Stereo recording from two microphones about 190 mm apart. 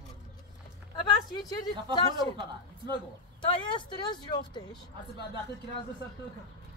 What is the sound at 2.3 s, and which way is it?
Speech, 25° right (ahead or behind).